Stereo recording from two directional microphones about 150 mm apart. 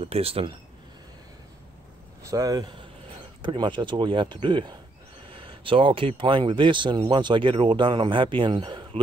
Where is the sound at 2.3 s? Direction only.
25° right (ahead or behind).